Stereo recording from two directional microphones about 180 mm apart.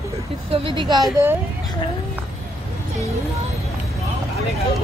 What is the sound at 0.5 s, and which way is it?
Speech, 30° right (ahead or behind).